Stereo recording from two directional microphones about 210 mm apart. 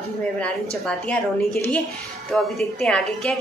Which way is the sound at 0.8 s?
5° left (ahead or behind).